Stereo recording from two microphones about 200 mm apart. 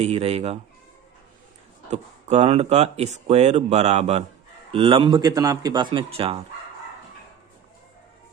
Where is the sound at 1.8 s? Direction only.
35° right (ahead or behind).